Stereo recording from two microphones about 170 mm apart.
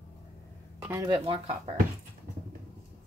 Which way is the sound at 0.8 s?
15° right (ahead or behind).